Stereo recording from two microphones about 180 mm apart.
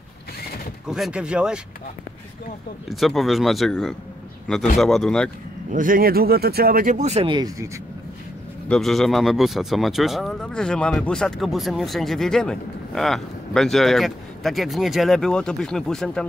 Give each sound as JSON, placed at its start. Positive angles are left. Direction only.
{"t": 0.8, "sound": "speech", "side_deg": 0}
{"t": 2.9, "sound": "speech", "side_deg": 0}
{"t": 5.7, "sound": "speech", "side_deg": -50}
{"t": 7.2, "sound": "speech", "side_deg": -20}
{"t": 8.6, "sound": "speech", "side_deg": 0}